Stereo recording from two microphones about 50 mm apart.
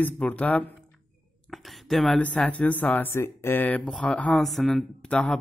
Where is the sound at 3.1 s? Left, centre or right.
Left.